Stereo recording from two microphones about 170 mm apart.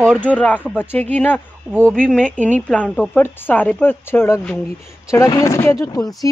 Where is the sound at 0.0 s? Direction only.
5° left (ahead or behind).